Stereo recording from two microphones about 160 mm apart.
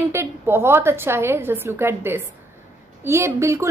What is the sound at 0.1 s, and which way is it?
A woman's voice, 15° right (ahead or behind).